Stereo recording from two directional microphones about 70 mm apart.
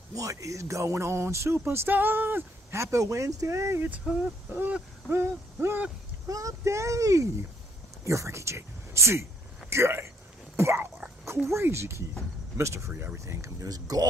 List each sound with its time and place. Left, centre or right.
0.1 s speech: right
2.7 s speech: right
4.1 s speech: centre
4.5 s speech: right
6.2 s speech: right
9.7 s a sound: right
11.4 s speech: right
13.7 s speech: right